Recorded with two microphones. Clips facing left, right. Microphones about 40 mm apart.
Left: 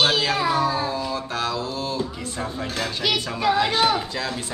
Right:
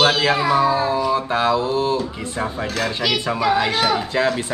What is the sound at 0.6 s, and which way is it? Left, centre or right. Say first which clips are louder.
Speech: right 5 dB; right.